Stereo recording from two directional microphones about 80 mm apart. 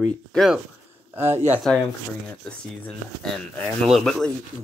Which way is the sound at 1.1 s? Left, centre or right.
Right.